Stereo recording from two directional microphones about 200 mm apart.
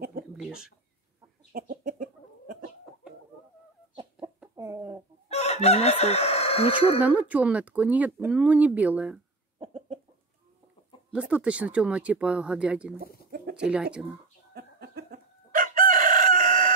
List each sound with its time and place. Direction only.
0.4 s speech: 5° right (ahead or behind)
1.5 s chicken: 45° right (ahead or behind)
3.9 s chicken: 25° right (ahead or behind)
4.4 s bird: 15° right (ahead or behind)
5.3 s crowing: 30° left (ahead or behind)
7.0 s speech: 10° right (ahead or behind)
9.6 s chicken: 30° right (ahead or behind)
11.1 s speech: 5° right (ahead or behind)
14.5 s chicken: 50° right (ahead or behind)